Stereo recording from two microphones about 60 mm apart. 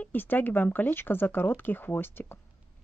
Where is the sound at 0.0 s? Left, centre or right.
Left.